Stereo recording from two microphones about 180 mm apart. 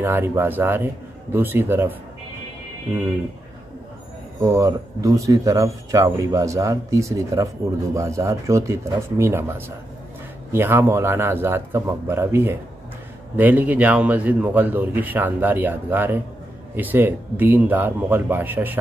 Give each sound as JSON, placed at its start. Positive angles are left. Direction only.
{"t": 0.0, "sound": "speech", "side_deg": -10}
{"t": 4.4, "sound": "speech", "side_deg": -15}